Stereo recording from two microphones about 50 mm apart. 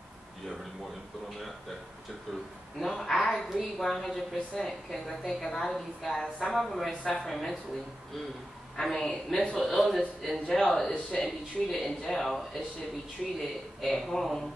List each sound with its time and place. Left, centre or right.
2.8 s a woman's voice: centre
6.9 s speech: left
7.2 s a woman's voice: centre
8.8 s a woman's voice: centre
13.7 s a woman's voice: centre